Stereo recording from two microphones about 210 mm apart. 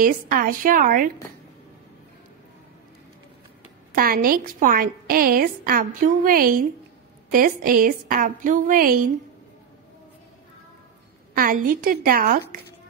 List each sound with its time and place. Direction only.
0.0 s a woman's voice: 45° right (ahead or behind)
3.9 s a woman's voice: 45° right (ahead or behind)
11.3 s a woman's voice: 40° right (ahead or behind)